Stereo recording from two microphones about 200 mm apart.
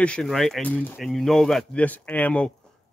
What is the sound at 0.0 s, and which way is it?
A man's voice, 5° left (ahead or behind).